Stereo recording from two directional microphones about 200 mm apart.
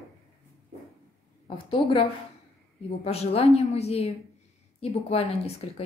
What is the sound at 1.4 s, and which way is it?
Speech, 25° left (ahead or behind).